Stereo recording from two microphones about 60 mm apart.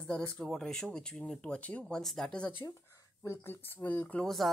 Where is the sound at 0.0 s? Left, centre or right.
Left.